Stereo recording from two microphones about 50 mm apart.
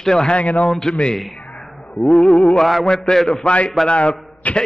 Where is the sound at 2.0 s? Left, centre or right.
Centre.